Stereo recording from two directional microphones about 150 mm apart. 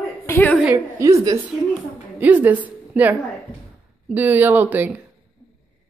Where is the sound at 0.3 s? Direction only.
15° left (ahead or behind).